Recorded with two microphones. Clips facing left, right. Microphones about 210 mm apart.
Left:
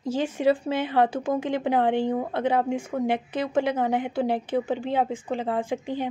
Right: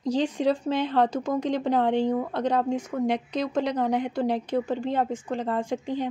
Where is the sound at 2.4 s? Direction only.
10° left (ahead or behind).